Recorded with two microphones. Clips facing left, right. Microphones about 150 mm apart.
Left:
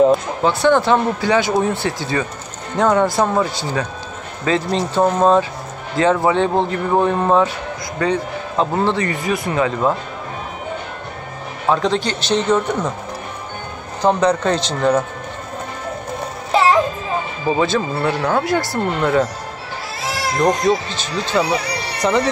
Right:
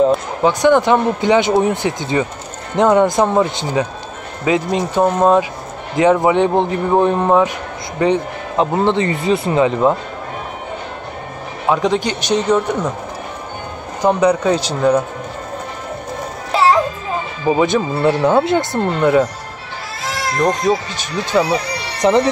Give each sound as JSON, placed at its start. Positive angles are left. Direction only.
{"t": 0.4, "sound": "speech", "side_deg": -15}
{"t": 11.7, "sound": "speech", "side_deg": -15}
{"t": 14.0, "sound": "speech", "side_deg": -10}
{"t": 17.5, "sound": "speech", "side_deg": -15}
{"t": 20.3, "sound": "speech", "side_deg": 5}
{"t": 20.9, "sound": "speech", "side_deg": -15}